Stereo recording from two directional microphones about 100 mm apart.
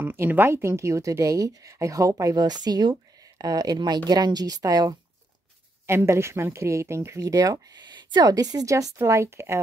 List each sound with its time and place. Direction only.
0.0 s speech: 20° right (ahead or behind); by 4.9 s 40° right (ahead or behind)
5.9 s a woman's voice: 25° right (ahead or behind)